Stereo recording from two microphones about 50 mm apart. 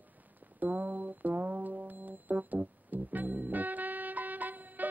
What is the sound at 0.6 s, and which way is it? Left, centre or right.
Music, right.